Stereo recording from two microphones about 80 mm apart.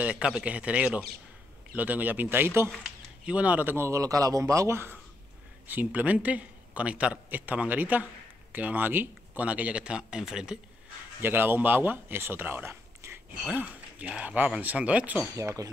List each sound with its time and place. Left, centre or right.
0.0 s a man's voice: centre; by 2.7 s right
3.3 s speech: centre; by 4.9 s right
5.7 s speech: right
11.1 s speech: right
13.5 s speech: right
15.3 s speech: right